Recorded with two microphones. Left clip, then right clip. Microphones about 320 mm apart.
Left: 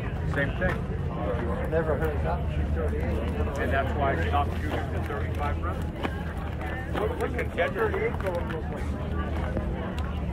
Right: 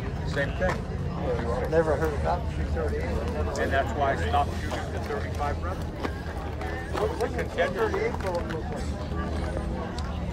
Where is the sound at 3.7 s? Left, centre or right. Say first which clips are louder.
Right 1 dB; right.